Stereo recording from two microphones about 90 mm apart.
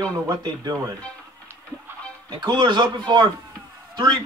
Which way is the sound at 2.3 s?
50° right (ahead or behind).